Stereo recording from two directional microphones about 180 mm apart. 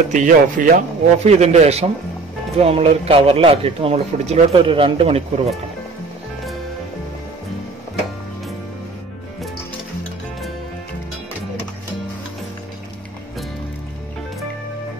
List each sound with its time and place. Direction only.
0.1 s a man's voice: 45° right (ahead or behind)